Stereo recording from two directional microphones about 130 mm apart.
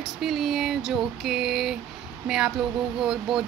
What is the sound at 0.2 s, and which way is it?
Speech, centre (ahead or behind).